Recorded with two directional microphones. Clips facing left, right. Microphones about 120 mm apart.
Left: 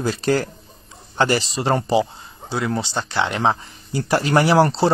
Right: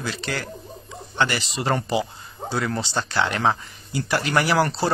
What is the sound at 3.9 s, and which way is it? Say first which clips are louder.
Speech: left 4 dB; 30° left (ahead or behind).